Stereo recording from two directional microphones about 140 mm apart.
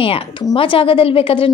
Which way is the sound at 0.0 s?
40° left (ahead or behind).